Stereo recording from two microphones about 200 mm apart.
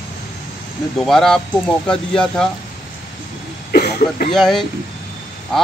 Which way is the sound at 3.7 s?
50° left (ahead or behind).